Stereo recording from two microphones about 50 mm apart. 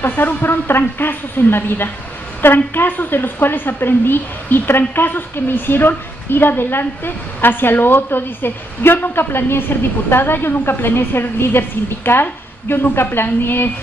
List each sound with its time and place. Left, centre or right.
0.1 s a woman's voice: left